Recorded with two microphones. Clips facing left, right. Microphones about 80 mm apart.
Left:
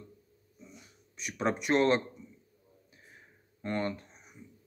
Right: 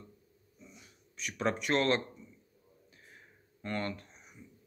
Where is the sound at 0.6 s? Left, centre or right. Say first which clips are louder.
Left 3 dB; centre.